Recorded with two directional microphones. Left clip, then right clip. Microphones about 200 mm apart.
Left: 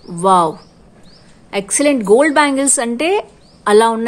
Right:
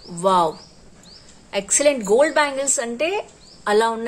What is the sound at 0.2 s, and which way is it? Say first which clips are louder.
Speech: left 5 dB; 25° left (ahead or behind).